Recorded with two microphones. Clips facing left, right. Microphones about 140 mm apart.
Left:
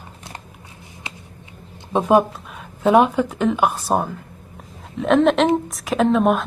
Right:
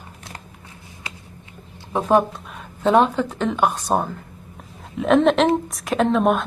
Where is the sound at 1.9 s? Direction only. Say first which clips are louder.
Left 2 dB; 10° left (ahead or behind).